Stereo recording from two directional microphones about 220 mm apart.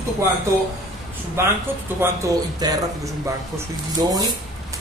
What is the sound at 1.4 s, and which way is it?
Speech, 10° right (ahead or behind).